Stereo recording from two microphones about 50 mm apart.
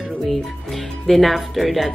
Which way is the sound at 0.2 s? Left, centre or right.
Centre.